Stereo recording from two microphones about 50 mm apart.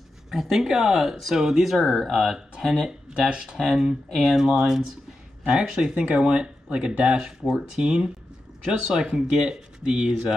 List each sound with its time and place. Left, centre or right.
0.3 s speech: centre
3.2 s speech: centre
3.7 s speech: centre; by 10.2 s right